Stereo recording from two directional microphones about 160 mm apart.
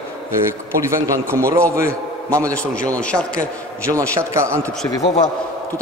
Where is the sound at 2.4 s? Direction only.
10° left (ahead or behind).